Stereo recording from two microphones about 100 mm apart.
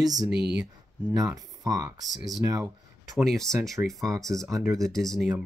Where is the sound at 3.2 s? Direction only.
5° left (ahead or behind).